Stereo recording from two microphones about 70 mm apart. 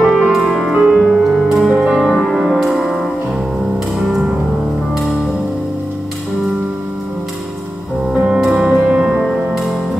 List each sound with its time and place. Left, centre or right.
0.2 s music: centre
8.1 s music: centre
8.4 s music: centre